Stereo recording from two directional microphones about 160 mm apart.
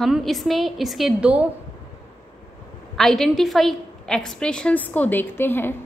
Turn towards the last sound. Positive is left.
turn(degrees=15)  # may be behind; listen again after turning